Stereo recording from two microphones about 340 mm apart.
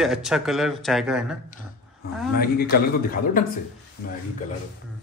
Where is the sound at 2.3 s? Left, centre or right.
Left.